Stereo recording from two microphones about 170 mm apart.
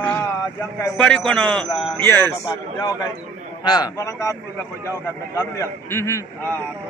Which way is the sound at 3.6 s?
25° left (ahead or behind).